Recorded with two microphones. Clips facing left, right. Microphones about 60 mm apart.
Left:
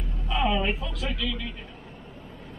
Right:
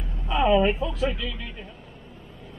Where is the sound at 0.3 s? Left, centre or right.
Centre.